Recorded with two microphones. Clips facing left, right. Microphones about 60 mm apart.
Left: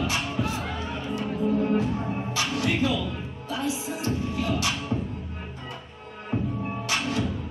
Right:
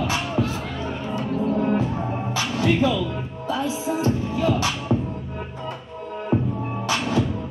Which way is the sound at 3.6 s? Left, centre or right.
Right.